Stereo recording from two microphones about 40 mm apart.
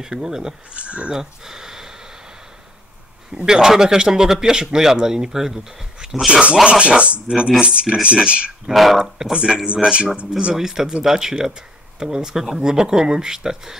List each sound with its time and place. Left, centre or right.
0.0 s a man's voice: centre
0.7 s speech: right
1.1 s speech: centre
3.4 s a man's voice: centre; by 8.2 s right
8.6 s a man's voice: centre
9.3 s speech: right
10.5 s a man's voice: centre